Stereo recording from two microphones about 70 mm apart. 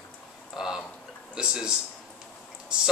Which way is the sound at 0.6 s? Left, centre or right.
Centre.